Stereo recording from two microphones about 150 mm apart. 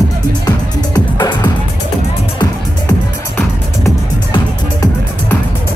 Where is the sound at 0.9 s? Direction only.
25° left (ahead or behind).